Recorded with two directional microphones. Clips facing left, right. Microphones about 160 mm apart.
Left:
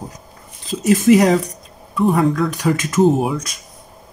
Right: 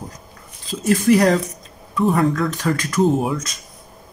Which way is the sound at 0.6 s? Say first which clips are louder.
Left 3 dB; 15° left (ahead or behind).